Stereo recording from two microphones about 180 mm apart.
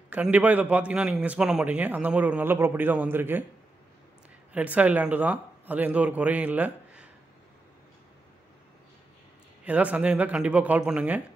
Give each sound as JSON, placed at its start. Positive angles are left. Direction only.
{"t": 0.1, "sound": "a man's voice", "side_deg": -10}
{"t": 4.5, "sound": "a man's voice", "side_deg": -10}
{"t": 9.7, "sound": "a man's voice", "side_deg": -10}